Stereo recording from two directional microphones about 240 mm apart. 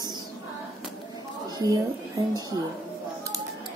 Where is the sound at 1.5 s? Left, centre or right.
Centre.